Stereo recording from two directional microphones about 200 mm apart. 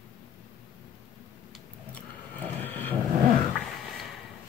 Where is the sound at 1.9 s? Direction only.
5° left (ahead or behind).